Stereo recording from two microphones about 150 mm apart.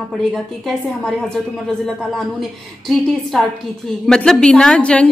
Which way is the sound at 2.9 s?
Centre (ahead or behind).